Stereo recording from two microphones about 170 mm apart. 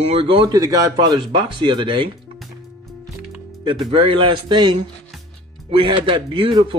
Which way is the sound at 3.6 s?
30° right (ahead or behind).